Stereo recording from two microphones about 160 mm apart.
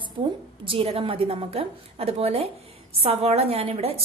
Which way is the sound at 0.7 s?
35° right (ahead or behind).